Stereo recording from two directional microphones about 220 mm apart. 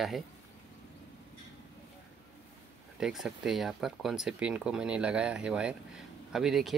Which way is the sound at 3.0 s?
Centre (ahead or behind).